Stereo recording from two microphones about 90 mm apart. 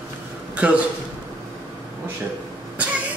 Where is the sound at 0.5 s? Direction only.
15° right (ahead or behind).